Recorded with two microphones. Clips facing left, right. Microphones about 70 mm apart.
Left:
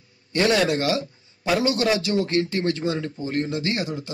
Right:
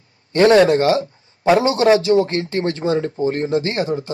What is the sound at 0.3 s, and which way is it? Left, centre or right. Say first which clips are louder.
Speech: right 9 dB; right.